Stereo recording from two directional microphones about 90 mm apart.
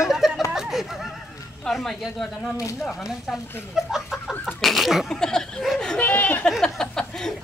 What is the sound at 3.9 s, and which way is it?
Chicken, 5° right (ahead or behind).